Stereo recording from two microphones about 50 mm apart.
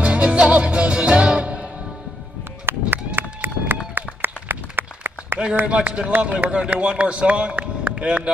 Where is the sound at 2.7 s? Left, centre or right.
Right.